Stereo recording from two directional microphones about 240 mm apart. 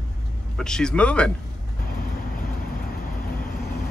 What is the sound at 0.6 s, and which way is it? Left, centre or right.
Speech, centre.